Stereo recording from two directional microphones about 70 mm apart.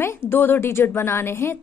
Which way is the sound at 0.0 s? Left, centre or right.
Left.